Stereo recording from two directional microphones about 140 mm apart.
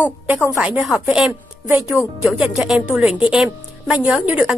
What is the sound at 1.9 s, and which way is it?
Speech, 15° left (ahead or behind).